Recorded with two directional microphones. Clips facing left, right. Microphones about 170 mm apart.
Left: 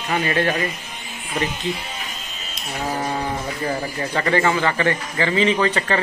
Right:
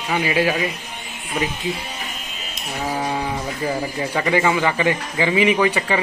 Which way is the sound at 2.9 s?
5° right (ahead or behind).